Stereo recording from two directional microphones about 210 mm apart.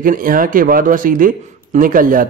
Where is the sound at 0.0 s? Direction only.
40° right (ahead or behind).